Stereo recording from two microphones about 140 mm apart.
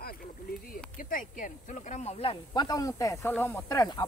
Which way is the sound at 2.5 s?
30° left (ahead or behind).